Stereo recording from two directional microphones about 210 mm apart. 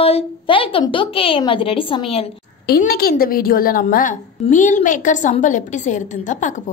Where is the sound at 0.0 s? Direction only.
25° left (ahead or behind).